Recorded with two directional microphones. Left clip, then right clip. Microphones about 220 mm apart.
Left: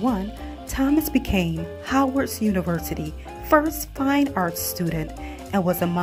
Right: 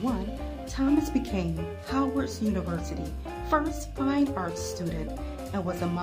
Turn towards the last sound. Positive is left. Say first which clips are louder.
# left 9 dB
turn(degrees=30)  # may be behind; listen again after turning